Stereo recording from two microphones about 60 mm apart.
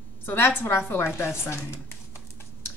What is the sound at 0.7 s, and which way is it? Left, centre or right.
A woman's voice, left.